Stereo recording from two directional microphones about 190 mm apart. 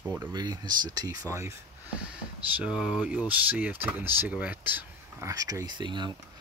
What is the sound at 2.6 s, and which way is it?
Speech, 5° right (ahead or behind).